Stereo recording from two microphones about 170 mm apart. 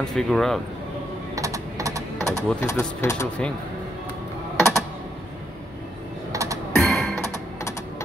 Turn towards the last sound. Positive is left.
turn(degrees=0)  # may be behind; listen again after turning